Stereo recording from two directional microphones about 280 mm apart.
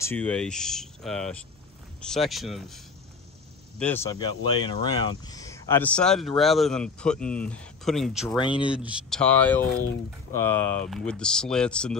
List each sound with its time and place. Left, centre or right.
0.0 s speech: centre
3.8 s speech: centre
8.4 s speech: centre
8.6 s speech: centre